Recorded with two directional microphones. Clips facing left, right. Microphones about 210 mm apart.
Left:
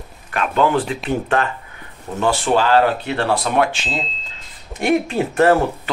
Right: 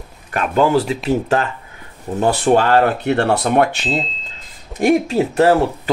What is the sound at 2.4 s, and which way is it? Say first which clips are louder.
Speech: right 2 dB; 55° right (ahead or behind).